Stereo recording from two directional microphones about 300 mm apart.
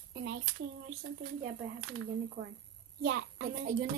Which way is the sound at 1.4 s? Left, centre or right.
Right.